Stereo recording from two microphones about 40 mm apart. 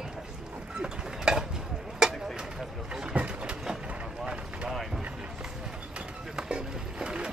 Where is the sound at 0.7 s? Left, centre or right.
Centre.